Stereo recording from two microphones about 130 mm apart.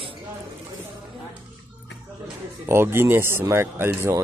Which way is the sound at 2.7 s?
20° right (ahead or behind).